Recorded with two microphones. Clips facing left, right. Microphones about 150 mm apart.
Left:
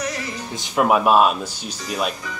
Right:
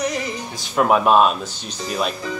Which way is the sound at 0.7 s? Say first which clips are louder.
Right 1 dB; 5° left (ahead or behind).